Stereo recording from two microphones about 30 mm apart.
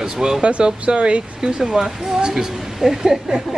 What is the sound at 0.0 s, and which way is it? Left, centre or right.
Speech, right.